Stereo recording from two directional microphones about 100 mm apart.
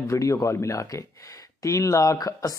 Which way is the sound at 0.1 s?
30° left (ahead or behind).